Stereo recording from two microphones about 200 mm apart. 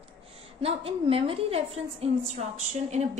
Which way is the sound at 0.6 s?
30° right (ahead or behind).